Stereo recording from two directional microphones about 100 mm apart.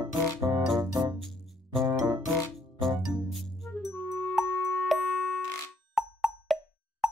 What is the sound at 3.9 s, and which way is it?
Music, 20° left (ahead or behind).